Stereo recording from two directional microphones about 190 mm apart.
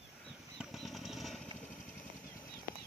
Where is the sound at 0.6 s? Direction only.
Centre (ahead or behind).